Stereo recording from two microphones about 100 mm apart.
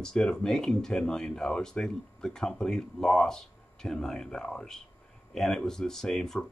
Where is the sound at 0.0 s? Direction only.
5° left (ahead or behind).